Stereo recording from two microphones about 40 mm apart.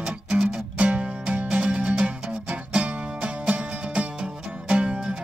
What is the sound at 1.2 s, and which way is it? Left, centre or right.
Music, right.